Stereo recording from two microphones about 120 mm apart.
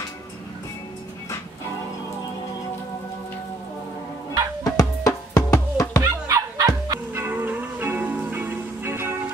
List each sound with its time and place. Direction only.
4.6 s music: 30° left (ahead or behind)
6.2 s music: 30° right (ahead or behind)
7.2 s music: 15° right (ahead or behind)